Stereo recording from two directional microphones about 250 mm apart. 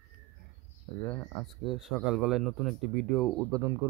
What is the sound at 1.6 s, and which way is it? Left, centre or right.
Speech, centre.